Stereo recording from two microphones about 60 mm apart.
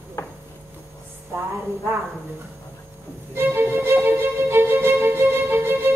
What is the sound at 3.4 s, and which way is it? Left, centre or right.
Music, right.